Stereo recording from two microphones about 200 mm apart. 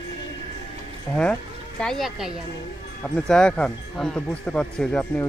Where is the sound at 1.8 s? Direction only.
Centre (ahead or behind).